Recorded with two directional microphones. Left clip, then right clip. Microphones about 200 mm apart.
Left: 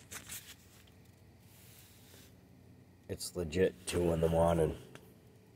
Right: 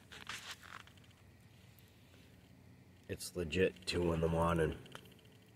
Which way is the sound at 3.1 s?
10° right (ahead or behind).